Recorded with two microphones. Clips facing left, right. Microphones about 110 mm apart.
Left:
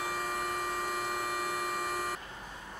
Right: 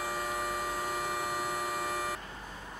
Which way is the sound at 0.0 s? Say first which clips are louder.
Even; centre (ahead or behind).